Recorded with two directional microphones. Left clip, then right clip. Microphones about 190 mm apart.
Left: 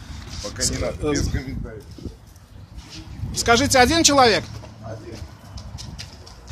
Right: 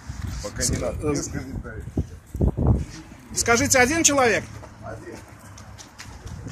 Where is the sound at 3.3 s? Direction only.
5° left (ahead or behind).